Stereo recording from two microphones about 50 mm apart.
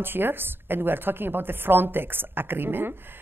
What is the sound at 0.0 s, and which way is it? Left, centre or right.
A woman's voice, right.